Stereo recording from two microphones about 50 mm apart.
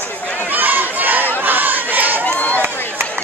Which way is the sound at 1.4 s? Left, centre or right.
Right.